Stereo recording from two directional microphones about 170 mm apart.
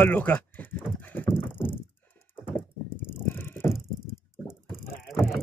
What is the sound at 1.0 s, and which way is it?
Clip-clop, 10° left (ahead or behind).